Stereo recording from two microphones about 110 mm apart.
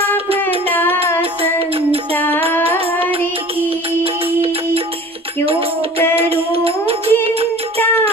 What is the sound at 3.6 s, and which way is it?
Music, 60° right (ahead or behind).